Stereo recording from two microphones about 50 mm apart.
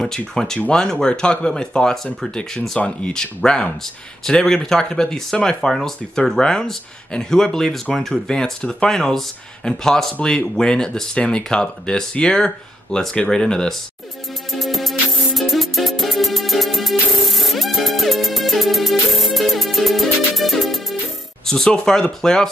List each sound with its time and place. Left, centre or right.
0.0 s speech: centre
14.5 s music: centre
21.5 s speech: centre